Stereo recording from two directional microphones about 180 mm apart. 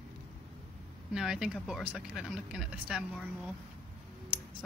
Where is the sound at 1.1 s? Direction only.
5° right (ahead or behind).